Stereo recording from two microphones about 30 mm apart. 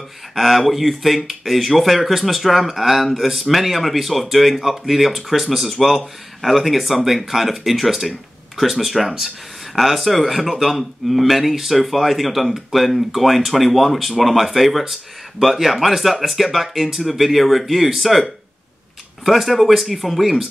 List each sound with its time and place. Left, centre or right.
0.3 s speech: centre